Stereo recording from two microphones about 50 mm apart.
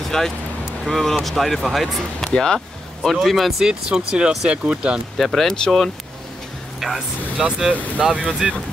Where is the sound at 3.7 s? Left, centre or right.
Centre.